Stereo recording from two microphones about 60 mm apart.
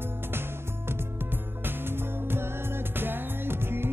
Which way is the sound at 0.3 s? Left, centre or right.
Right.